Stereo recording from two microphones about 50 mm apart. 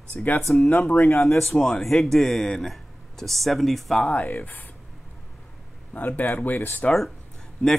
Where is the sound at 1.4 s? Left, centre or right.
Centre.